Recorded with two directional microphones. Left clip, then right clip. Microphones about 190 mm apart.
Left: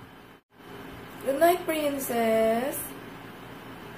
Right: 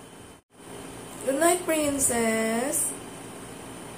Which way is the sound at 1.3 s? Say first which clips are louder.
Left 1 dB; 25° right (ahead or behind).